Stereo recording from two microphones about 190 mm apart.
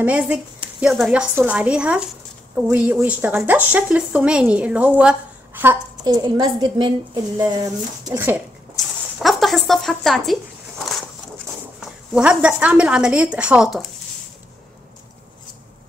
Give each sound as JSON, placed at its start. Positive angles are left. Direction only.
{"t": 0.0, "sound": "a woman's voice", "side_deg": -10}
{"t": 6.0, "sound": "speech", "side_deg": -20}
{"t": 8.7, "sound": "a sound", "side_deg": 0}
{"t": 11.8, "sound": "a woman's voice", "side_deg": -5}